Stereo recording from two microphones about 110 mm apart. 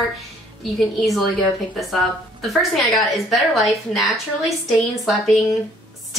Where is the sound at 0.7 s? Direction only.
Centre (ahead or behind).